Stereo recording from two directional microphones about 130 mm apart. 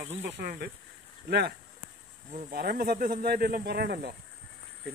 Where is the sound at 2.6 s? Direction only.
90° right.